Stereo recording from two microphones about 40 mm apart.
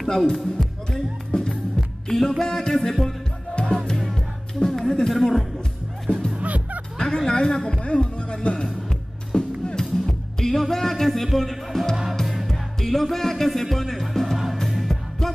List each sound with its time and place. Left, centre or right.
0.0 s speech: centre
0.9 s music: centre
2.0 s music: centre
3.5 s music: centre
6.3 s music: right
7.0 s a woman's voice: centre
9.3 s music: centre
11.3 s speech: centre
12.4 s music: centre
14.2 s music: centre
14.9 s music: centre